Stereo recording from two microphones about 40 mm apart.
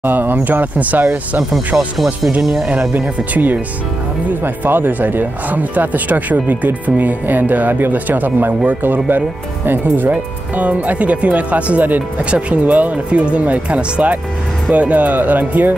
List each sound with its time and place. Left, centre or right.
0.0 s speech: right
2.4 s speech: centre
4.3 s speech: right
10.1 s speech: right